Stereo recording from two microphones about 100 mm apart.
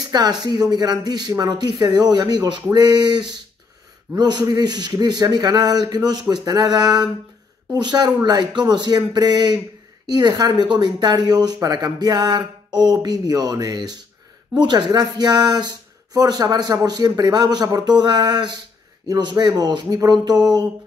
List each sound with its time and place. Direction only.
0.4 s speech: 45° right (ahead or behind)